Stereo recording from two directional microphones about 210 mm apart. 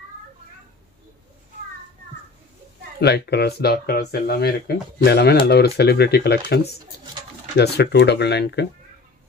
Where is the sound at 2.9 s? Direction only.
50° left (ahead or behind).